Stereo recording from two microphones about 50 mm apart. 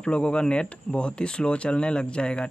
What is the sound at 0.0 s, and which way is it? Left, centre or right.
Speech, left.